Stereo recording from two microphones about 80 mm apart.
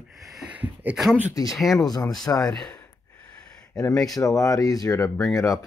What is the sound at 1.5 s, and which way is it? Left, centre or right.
Speech, centre.